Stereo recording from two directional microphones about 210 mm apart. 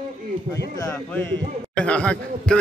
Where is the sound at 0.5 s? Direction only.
10° left (ahead or behind).